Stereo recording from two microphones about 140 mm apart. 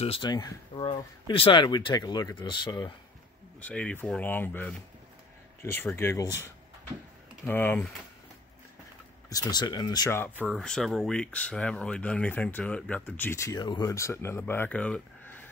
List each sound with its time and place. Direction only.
0.0 s speech: 35° left (ahead or behind)
3.6 s speech: 10° left (ahead or behind)
7.4 s speech: 15° left (ahead or behind)
9.3 s speech: 30° left (ahead or behind)
10.5 s speech: 5° left (ahead or behind); by 13.7 s 20° left (ahead or behind)
13.7 s speech: 30° left (ahead or behind)
13.9 s speech: 20° left (ahead or behind)